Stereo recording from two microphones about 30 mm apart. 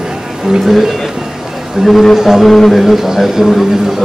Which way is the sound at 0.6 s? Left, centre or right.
Centre.